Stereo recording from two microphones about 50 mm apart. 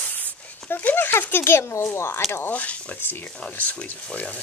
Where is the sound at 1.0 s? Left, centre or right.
Left.